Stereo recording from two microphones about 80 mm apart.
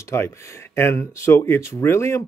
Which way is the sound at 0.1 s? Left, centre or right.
Left.